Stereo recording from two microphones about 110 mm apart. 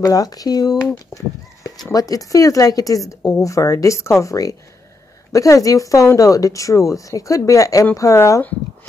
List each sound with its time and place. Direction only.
0.0 s a woman's voice: 35° left (ahead or behind)